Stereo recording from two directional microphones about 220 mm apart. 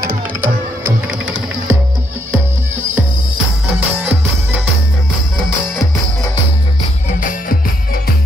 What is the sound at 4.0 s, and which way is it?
Music, 10° right (ahead or behind).